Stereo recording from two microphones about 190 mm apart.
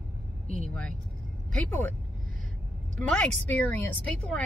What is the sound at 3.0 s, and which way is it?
Speech, 10° left (ahead or behind).